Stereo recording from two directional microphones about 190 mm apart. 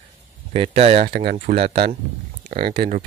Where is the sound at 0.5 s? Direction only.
30° right (ahead or behind).